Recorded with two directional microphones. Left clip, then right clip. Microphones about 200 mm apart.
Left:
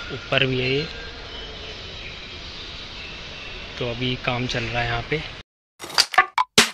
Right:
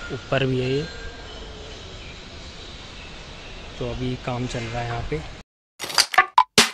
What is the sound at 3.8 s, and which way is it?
Speech, 5° right (ahead or behind).